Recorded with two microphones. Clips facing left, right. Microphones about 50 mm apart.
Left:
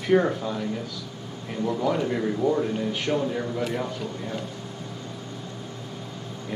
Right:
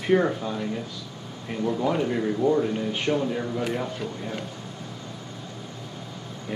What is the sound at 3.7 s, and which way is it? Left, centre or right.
Speech, centre.